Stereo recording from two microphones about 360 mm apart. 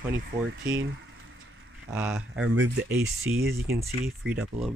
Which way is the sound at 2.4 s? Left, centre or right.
Right.